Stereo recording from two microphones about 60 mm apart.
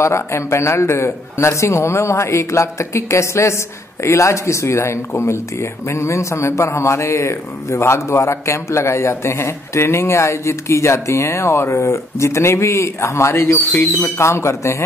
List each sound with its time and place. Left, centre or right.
0.0 s a man's voice: left
13.7 s speech: left
14.1 s a man's voice: left